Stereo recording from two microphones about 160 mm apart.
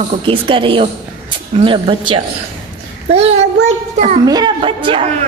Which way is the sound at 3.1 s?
40° right (ahead or behind).